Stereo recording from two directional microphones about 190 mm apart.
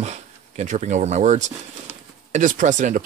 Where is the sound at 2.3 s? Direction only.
40° right (ahead or behind).